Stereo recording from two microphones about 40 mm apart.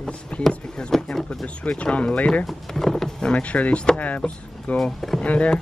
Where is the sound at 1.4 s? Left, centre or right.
Left.